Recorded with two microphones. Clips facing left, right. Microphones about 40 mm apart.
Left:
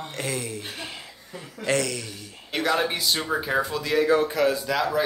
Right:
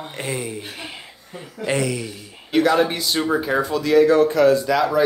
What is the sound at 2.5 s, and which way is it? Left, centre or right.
Speech, centre.